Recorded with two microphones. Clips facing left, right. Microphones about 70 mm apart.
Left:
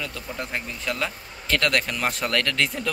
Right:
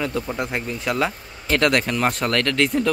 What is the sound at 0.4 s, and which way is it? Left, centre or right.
Speech, centre.